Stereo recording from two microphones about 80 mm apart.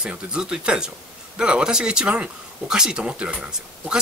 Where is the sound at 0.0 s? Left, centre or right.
Centre.